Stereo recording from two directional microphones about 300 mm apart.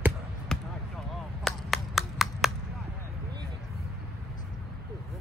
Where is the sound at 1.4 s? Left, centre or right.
Centre.